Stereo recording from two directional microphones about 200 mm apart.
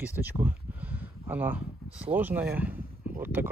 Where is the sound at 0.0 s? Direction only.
10° right (ahead or behind).